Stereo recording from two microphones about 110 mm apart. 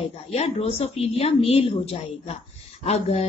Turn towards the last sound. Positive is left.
turn(degrees=75)  # may be behind; listen again after turning